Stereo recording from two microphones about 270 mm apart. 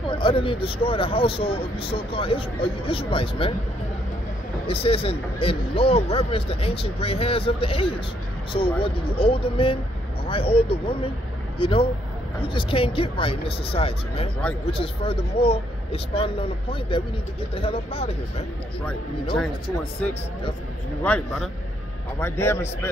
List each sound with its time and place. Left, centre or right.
0.1 s speech: centre
4.6 s speech: left
21.0 s a man's voice: centre